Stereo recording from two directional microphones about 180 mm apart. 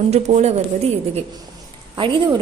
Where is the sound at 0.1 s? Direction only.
35° right (ahead or behind).